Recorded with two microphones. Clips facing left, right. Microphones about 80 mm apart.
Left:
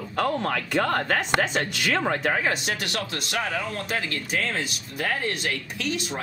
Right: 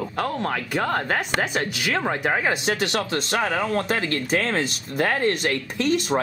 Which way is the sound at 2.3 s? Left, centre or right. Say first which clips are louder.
Right 3 dB; right.